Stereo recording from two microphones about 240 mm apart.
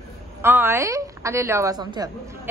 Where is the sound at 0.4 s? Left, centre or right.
Centre.